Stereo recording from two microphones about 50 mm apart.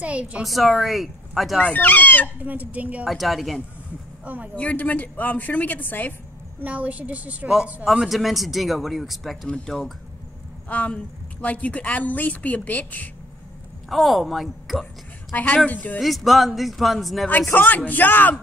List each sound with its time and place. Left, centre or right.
0.0 s a woman's voice: right
0.4 s speech: centre
1.6 s a woman's voice: left
2.4 s speech: right
3.1 s speech: centre
4.2 s speech: right
4.6 s a woman's voice: left
6.6 s a woman's voice: right
8.1 s speech: centre
10.7 s a woman's voice: left
13.8 s speech: centre
15.3 s a woman's voice: left
16.0 s speech: centre
17.5 s a woman's voice: left